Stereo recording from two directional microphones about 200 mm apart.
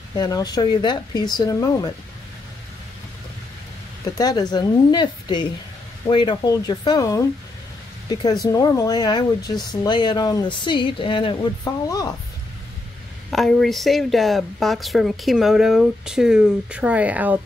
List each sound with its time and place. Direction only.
0.1 s speech: 20° left (ahead or behind)
4.0 s speech: 20° left (ahead or behind)
13.3 s speech: centre (ahead or behind)